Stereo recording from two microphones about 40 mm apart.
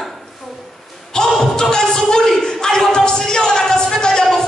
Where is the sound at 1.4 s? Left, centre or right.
Centre.